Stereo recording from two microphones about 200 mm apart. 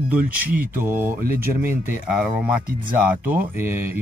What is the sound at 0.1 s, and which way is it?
Speech, 10° right (ahead or behind).